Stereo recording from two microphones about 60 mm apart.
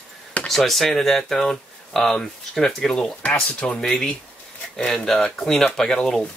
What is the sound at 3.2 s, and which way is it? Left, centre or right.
Speech, left.